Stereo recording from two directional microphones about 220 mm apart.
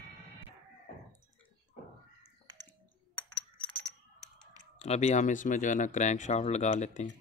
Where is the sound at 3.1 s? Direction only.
5° left (ahead or behind).